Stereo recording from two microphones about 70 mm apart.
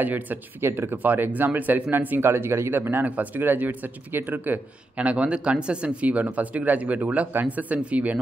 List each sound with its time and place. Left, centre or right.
0.0 s speech: right
0.9 s speech: right